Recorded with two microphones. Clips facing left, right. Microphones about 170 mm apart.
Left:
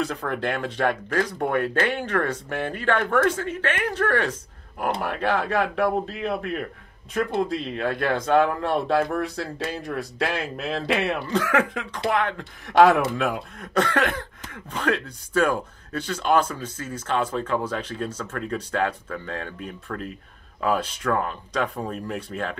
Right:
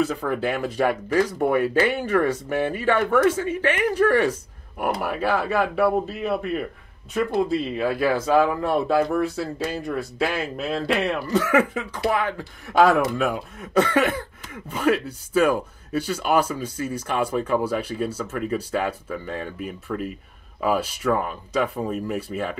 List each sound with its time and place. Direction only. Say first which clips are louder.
0.0 s speech: right 3 dB; 5° right (ahead or behind)